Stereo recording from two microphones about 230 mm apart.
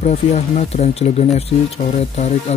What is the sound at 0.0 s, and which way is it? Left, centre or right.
Speech, left.